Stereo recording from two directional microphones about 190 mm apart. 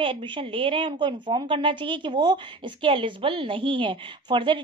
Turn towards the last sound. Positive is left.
turn(degrees=-25)  # may be behind; listen again after turning